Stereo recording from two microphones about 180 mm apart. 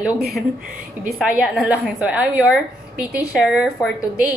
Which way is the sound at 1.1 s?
5° right (ahead or behind).